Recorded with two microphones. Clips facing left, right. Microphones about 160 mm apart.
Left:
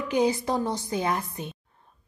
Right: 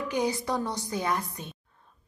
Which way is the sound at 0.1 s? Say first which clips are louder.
Left 5 dB; 20° left (ahead or behind).